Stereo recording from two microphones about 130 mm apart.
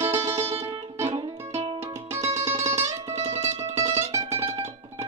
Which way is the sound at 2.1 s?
20° right (ahead or behind).